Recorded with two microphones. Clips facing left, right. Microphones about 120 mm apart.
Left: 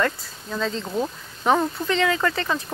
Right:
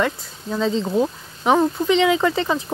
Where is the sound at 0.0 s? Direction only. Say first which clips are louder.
Right 2 dB; 15° right (ahead or behind).